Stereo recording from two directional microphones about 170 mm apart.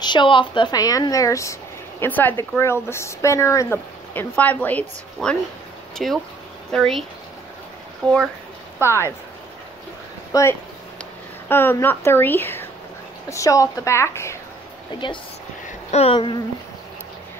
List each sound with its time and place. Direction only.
0.0 s speech: 25° left (ahead or behind)
10.3 s speech: 20° left (ahead or behind)
15.0 s speech: 25° left (ahead or behind)